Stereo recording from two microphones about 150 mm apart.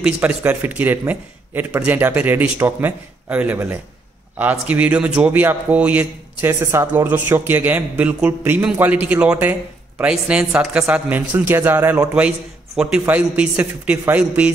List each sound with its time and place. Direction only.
0.0 s a man's voice: 10° right (ahead or behind)